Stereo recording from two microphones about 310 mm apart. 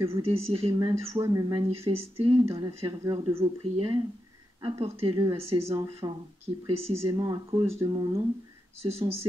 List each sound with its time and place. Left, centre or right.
0.0 s speech: centre